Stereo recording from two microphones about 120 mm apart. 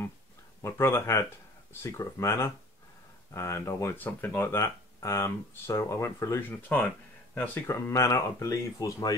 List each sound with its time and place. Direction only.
0.6 s speech: 25° left (ahead or behind)
6.5 s speech: 15° left (ahead or behind)
7.6 s speech: 25° left (ahead or behind)